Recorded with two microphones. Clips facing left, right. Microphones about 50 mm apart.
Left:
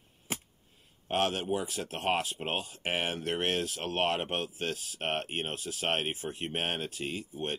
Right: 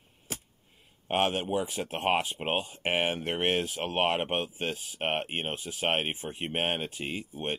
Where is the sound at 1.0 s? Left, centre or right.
Right.